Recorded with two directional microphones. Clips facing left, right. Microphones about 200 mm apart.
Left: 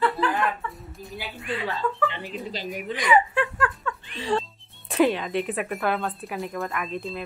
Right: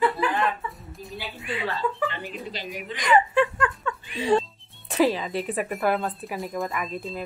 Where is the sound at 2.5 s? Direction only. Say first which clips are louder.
Left 3 dB; 45° left (ahead or behind).